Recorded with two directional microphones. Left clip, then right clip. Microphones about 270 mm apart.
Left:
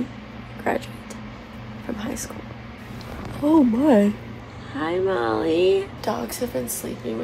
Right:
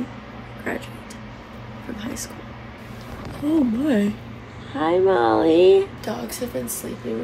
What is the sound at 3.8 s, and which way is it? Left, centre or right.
Speech, centre.